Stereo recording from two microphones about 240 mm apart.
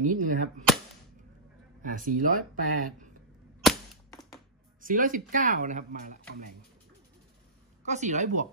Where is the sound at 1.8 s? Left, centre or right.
Right.